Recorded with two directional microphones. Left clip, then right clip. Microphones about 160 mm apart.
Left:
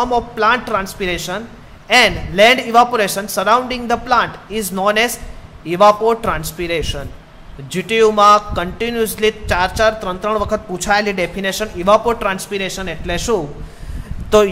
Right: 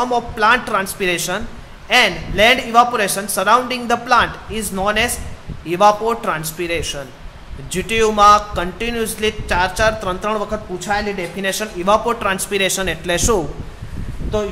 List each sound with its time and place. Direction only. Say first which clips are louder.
0.0 s a man's voice: left 1 dB; 15° left (ahead or behind)
1.9 s speech: left 2 dB; 25° left (ahead or behind)
10.5 s a woman's voice: left 5 dB; 35° left (ahead or behind)
11.4 s speech: left 1 dB; 20° left (ahead or behind)
12.4 s speech: right 4 dB; centre (ahead or behind)